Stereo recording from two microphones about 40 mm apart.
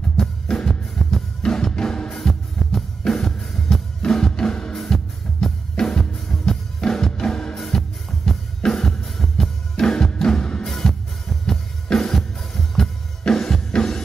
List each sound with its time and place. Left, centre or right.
0.2 s music: centre
10.7 s music: centre
11.4 s drum: centre
13.2 s music: centre